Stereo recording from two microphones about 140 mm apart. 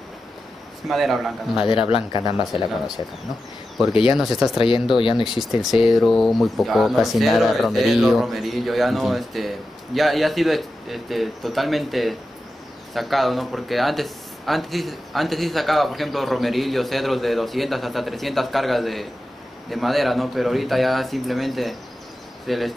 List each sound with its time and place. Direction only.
0.8 s speech: centre (ahead or behind)
1.7 s speech: 40° left (ahead or behind)
4.1 s speech: centre (ahead or behind)
4.6 s speech: 40° left (ahead or behind)
5.3 s speech: 5° right (ahead or behind)